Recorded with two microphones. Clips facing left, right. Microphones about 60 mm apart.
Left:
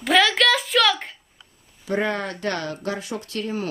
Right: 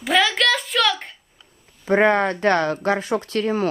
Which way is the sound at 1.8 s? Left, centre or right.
Right.